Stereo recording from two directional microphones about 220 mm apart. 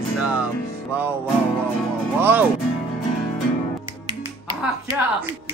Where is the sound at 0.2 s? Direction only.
5° right (ahead or behind).